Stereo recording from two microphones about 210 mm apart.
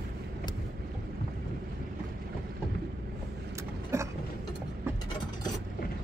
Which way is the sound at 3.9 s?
15° right (ahead or behind).